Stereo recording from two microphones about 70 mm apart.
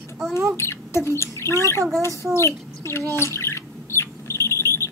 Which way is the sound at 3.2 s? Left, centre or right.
Left.